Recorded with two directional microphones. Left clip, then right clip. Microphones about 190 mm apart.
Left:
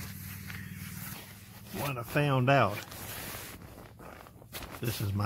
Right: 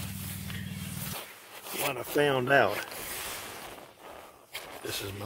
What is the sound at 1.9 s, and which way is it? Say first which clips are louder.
Speech: right 4 dB; 20° right (ahead or behind).